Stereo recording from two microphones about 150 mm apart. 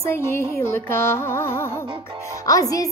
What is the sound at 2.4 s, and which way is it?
Speech, 20° left (ahead or behind).